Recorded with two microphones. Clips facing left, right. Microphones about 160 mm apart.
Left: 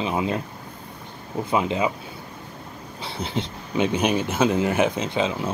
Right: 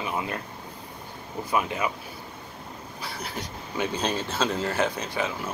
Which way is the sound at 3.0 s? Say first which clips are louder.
Left 7 dB; 25° left (ahead or behind).